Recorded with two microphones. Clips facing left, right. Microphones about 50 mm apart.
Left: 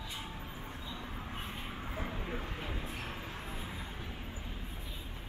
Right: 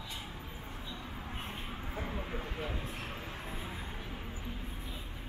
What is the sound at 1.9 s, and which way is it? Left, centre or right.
Vehicle, centre.